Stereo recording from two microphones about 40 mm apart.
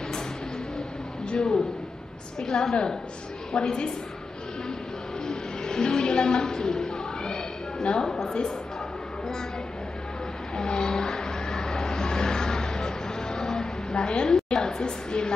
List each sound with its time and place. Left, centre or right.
1.3 s a man's voice: left
5.2 s a sound: centre
10.5 s vehicle: centre